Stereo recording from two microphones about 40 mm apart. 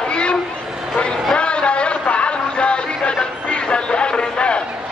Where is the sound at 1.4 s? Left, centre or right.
Left.